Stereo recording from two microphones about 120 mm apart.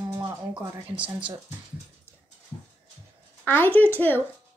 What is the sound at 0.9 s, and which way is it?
Speech, 10° right (ahead or behind).